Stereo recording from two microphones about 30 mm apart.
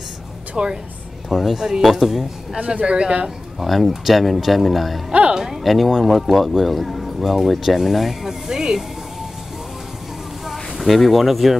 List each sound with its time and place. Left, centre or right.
0.6 s speech: right
1.3 s speech: centre
2.7 s speech: right
3.5 s a man's voice: centre
5.3 s speech: centre
5.6 s a man's voice: centre
8.3 s a sound: right
10.4 s a sound: centre